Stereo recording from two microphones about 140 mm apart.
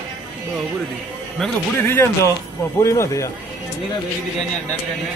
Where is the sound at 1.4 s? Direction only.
5° left (ahead or behind).